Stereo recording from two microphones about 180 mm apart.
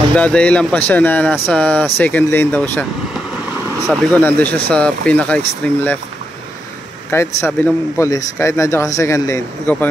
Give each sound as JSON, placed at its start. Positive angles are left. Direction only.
{"t": 0.1, "sound": "a man's voice", "side_deg": 5}
{"t": 4.2, "sound": "a man's voice", "side_deg": 10}
{"t": 7.1, "sound": "a man's voice", "side_deg": 15}